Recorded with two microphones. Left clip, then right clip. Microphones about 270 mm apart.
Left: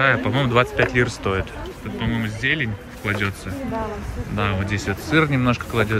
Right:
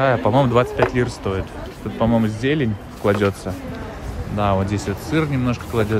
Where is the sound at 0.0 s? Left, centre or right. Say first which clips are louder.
Right 2 dB; centre.